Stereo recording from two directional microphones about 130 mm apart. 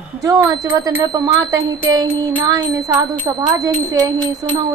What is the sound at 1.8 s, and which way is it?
A woman's voice, 25° right (ahead or behind).